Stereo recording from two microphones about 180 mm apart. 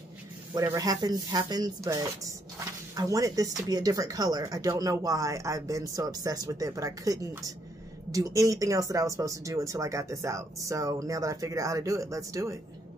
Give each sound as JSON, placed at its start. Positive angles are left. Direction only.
{"t": 0.6, "sound": "speech", "side_deg": -20}